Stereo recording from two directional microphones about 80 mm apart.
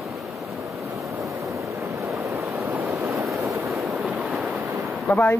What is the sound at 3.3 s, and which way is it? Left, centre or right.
Vehicle, right.